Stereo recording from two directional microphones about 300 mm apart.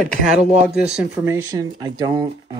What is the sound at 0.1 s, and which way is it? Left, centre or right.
Speech, right.